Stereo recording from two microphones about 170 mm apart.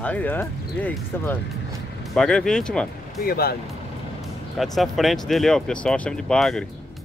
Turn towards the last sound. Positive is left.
turn(degrees=5)  # may be behind; listen again after turning